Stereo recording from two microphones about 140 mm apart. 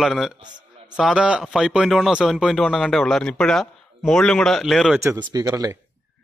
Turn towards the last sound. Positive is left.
turn(degrees=-25)  # may be behind; listen again after turning